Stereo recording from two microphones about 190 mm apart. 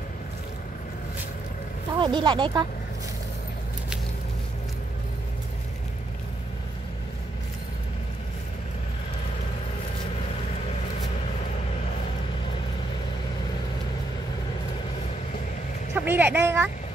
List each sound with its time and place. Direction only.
2.0 s speech: 25° right (ahead or behind)
15.9 s a woman's voice: 10° right (ahead or behind)